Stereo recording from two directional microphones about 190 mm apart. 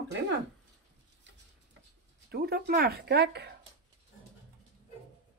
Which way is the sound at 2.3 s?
55° right (ahead or behind).